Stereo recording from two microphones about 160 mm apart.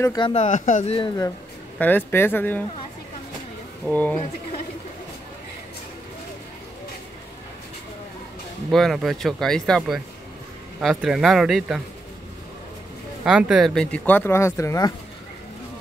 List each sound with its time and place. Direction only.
0.0 s speech: 25° left (ahead or behind)
0.3 s speech: 45° left (ahead or behind)
1.8 s speech: 10° left (ahead or behind)
3.8 s speech: 10° left (ahead or behind)
8.7 s speech: centre (ahead or behind)
13.2 s speech: 5° right (ahead or behind); by 15.0 s 20° left (ahead or behind)